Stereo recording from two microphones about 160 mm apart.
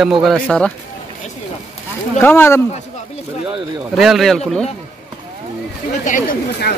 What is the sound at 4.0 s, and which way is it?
Speech, centre (ahead or behind).